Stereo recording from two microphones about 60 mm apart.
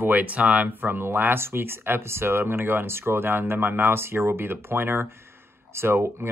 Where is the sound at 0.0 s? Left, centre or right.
Right.